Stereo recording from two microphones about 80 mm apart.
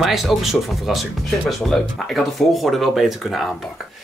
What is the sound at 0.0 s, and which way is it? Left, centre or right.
A woman's voice, centre.